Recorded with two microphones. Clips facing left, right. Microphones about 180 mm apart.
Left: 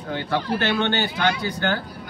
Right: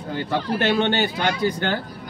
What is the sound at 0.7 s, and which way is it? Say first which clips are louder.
Speech: right 2 dB; 15° right (ahead or behind).